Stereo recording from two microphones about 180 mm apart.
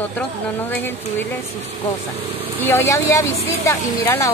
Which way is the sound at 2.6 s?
15° left (ahead or behind).